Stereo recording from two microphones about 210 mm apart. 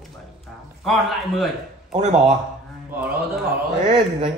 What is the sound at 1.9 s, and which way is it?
Speech, 25° right (ahead or behind).